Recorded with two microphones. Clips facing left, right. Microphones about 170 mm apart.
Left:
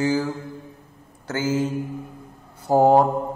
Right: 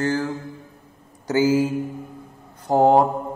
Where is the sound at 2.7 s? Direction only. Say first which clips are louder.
Even; 5° left (ahead or behind).